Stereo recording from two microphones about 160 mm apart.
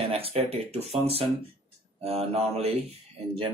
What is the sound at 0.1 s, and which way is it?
Speech, 40° right (ahead or behind).